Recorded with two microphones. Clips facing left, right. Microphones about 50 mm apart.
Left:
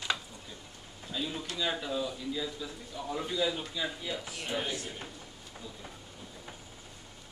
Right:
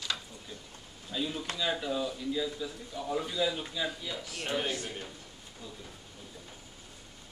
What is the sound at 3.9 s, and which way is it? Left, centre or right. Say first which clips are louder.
Speech: left 1 dB; centre.